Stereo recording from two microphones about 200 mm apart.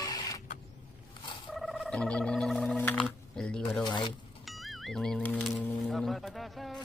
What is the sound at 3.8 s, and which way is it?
Speech, 25° left (ahead or behind).